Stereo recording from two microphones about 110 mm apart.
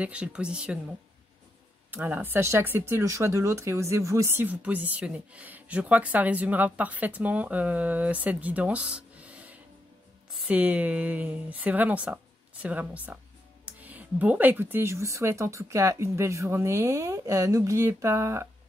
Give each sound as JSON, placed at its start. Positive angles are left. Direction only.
{"t": 0.0, "sound": "speech", "side_deg": -10}
{"t": 1.9, "sound": "speech", "side_deg": -15}